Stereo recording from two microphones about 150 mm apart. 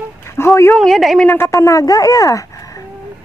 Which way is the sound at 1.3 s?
20° left (ahead or behind).